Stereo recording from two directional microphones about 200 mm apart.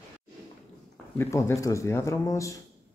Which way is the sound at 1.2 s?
15° left (ahead or behind).